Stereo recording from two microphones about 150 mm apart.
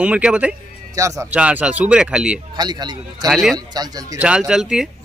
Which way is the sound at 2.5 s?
30° right (ahead or behind).